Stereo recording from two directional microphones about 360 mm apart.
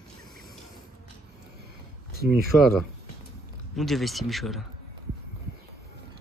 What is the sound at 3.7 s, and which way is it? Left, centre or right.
Speech, centre.